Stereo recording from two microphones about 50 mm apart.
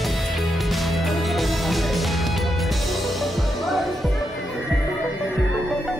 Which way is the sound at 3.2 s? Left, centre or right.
Centre.